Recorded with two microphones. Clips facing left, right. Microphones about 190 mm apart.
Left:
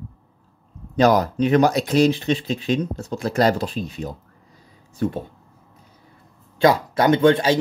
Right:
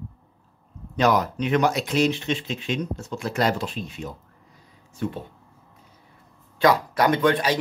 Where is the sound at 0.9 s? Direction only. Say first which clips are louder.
Left 4 dB; 35° left (ahead or behind).